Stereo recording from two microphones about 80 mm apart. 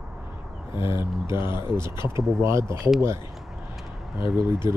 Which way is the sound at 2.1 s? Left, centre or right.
Right.